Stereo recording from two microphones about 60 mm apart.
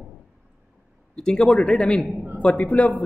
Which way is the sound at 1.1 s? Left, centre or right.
Centre.